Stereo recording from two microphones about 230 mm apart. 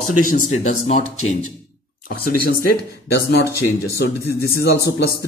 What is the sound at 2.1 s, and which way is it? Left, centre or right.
A man's voice, left.